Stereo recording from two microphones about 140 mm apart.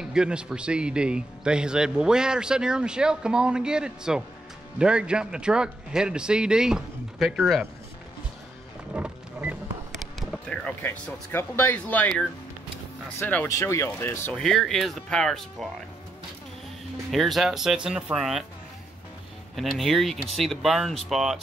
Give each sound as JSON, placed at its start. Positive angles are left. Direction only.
{"t": 0.0, "sound": "a man's voice", "side_deg": -5}
{"t": 8.9, "sound": "music", "side_deg": -10}
{"t": 9.9, "sound": "basketball bounce", "side_deg": 5}
{"t": 10.8, "sound": "speech", "side_deg": 15}
{"t": 14.4, "sound": "a man's voice", "side_deg": 5}
{"t": 17.1, "sound": "a man's voice", "side_deg": 0}
{"t": 19.5, "sound": "a man's voice", "side_deg": 0}